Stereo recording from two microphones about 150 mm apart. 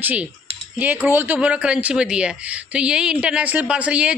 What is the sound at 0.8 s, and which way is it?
A man's voice, 10° right (ahead or behind).